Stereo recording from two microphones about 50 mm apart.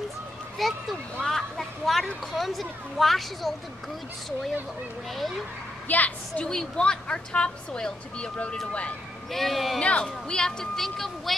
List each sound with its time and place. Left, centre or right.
0.6 s speech: centre
1.2 s a sound: centre
2.3 s speech: centre
5.9 s a woman's voice: left
6.4 s a woman's voice: centre
9.3 s speech: centre
9.8 s a woman's voice: left; by 11.3 s centre